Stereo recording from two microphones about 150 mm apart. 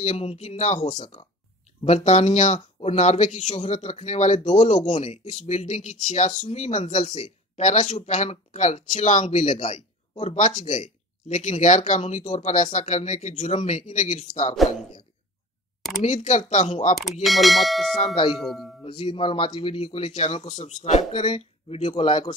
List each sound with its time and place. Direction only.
0.0 s speech: 45° left (ahead or behind)
16.0 s speech: 50° left (ahead or behind)
17.2 s speech: centre (ahead or behind)
17.9 s speech: 40° left (ahead or behind)
18.3 s speech: centre (ahead or behind)
18.8 s speech: 35° left (ahead or behind)